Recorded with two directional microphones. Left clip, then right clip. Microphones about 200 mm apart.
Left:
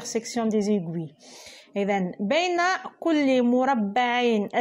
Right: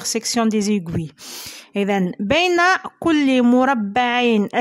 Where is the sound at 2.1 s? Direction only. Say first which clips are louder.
Right 6 dB; 25° right (ahead or behind).